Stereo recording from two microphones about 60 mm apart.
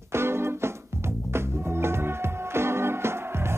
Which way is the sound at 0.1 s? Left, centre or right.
Right.